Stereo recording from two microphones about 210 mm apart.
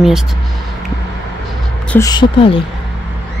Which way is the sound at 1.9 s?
15° left (ahead or behind).